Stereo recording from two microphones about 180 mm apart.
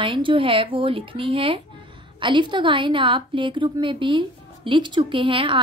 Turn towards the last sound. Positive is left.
turn(degrees=-30)  # may be behind; listen again after turning